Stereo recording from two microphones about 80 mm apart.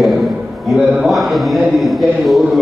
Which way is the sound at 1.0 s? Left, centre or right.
Centre.